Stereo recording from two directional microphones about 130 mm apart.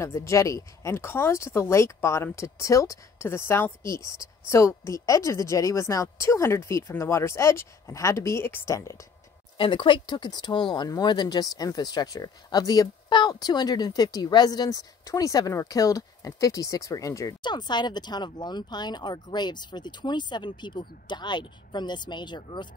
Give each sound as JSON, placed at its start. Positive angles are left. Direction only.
{"t": 0.0, "sound": "speech", "side_deg": 20}
{"t": 9.6, "sound": "speech", "side_deg": 40}